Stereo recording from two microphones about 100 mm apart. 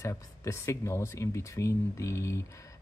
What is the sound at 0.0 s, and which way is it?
Speech, 30° left (ahead or behind).